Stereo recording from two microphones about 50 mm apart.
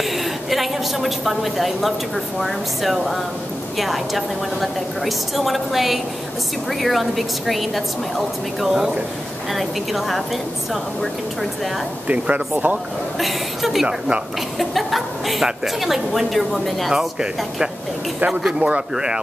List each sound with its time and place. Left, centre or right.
0.0 s a woman's voice: centre
12.1 s speech: right
13.2 s a woman's voice: centre
13.8 s speech: right
14.6 s a woman's voice: centre
16.9 s speech: centre
18.4 s speech: centre